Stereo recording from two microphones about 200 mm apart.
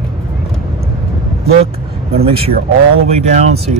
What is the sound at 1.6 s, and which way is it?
Speech, 30° right (ahead or behind).